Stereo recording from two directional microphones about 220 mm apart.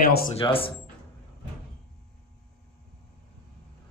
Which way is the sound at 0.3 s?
25° left (ahead or behind).